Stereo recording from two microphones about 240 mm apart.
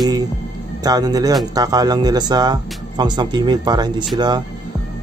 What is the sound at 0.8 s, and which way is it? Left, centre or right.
Speech, centre.